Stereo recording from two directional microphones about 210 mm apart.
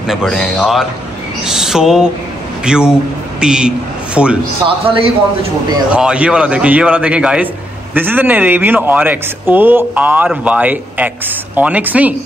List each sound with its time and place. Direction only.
0.1 s a man's voice: centre (ahead or behind)
4.6 s a man's voice: 25° right (ahead or behind)
5.9 s speech: 5° right (ahead or behind)